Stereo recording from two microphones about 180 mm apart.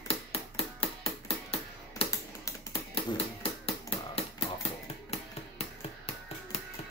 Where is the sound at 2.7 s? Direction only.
30° left (ahead or behind).